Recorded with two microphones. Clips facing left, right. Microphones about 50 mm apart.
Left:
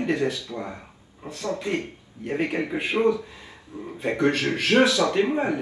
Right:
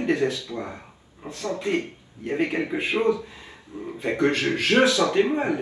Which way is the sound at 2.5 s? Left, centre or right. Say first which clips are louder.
Even; right.